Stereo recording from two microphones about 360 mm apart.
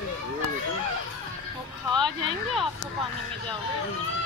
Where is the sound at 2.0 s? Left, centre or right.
Centre.